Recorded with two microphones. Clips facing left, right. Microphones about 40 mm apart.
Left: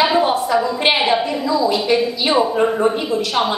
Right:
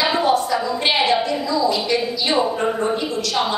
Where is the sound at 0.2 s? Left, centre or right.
Left.